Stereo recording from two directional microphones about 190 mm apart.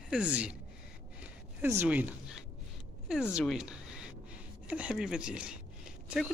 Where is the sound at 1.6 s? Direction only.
10° right (ahead or behind).